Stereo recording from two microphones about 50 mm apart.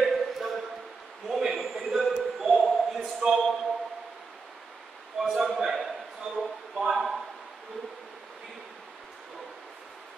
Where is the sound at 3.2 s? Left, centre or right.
Centre.